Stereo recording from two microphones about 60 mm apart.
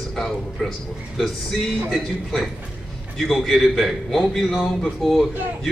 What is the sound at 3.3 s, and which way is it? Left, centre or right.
A man's voice, centre.